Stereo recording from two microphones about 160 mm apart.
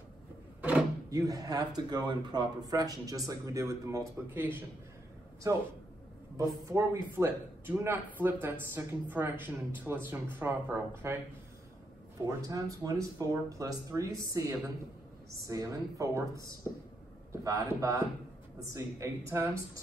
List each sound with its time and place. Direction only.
0.6 s drawer open or close: 10° right (ahead or behind)
1.1 s speech: 20° right (ahead or behind)
6.3 s a man's voice: 20° right (ahead or behind)
12.3 s a man's voice: 20° right (ahead or behind)